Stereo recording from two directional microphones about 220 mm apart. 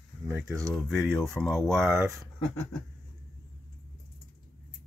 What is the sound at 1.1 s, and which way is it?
Rub, 10° right (ahead or behind).